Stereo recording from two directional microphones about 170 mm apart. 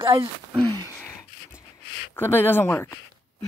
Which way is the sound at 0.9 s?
15° left (ahead or behind).